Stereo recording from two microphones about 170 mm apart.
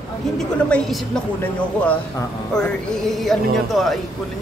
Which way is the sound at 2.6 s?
5° left (ahead or behind).